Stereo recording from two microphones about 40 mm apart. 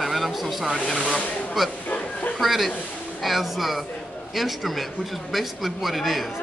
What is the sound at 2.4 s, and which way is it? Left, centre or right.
Speech, centre.